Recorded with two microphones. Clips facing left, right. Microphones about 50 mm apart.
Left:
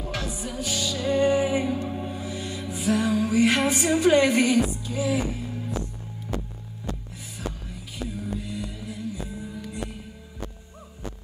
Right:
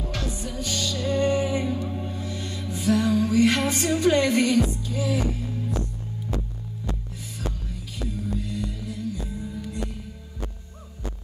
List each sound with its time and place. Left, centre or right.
0.0 s music: centre
8.1 s music: centre